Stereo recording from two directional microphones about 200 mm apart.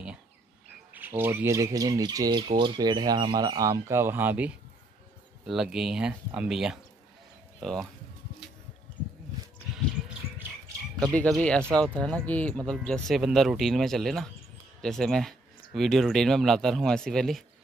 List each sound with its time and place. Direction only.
0.9 s speech: 10° right (ahead or behind)
11.1 s speech: 5° left (ahead or behind)